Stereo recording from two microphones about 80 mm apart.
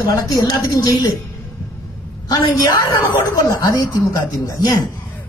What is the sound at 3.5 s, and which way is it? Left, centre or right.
Speech, left.